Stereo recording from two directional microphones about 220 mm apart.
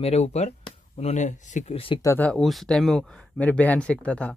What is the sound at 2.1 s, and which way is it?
Speech, 5° left (ahead or behind).